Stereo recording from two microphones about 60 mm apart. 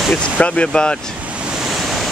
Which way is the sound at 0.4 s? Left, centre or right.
Centre.